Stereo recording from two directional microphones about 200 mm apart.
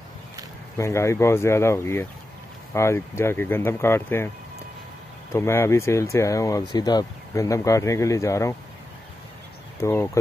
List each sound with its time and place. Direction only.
0.7 s speech: 15° left (ahead or behind)
5.3 s speech: 10° left (ahead or behind)
9.8 s speech: 15° left (ahead or behind)